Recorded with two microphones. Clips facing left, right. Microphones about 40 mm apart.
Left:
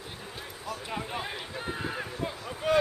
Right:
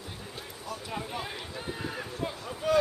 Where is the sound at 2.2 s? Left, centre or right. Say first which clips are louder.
Right 2 dB; centre.